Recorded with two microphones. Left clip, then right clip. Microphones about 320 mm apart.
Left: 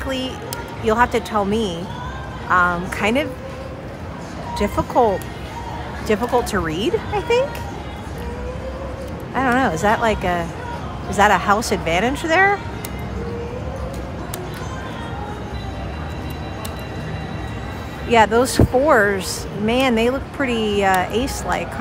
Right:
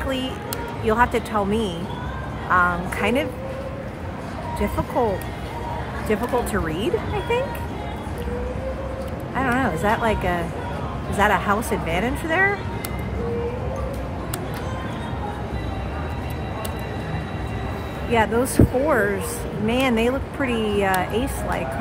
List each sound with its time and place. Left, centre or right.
0.8 s speech: centre
4.6 s speech: centre
9.3 s speech: centre
18.1 s speech: centre
20.5 s speech: left
20.8 s speech: centre